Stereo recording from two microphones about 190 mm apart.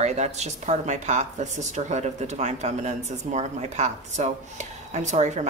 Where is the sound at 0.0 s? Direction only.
35° right (ahead or behind).